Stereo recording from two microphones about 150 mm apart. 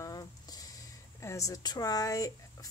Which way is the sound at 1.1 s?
20° left (ahead or behind).